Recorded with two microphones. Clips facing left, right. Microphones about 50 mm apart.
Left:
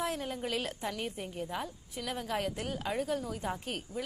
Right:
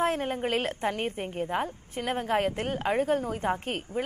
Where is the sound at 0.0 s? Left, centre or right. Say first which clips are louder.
Right 8 dB; right.